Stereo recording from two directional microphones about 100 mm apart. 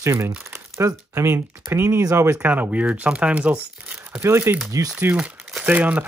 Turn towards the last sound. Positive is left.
turn(degrees=-15)  # may be behind; listen again after turning